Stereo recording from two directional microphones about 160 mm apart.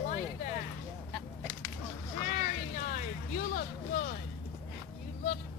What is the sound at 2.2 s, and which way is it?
Vehicle, 60° left (ahead or behind).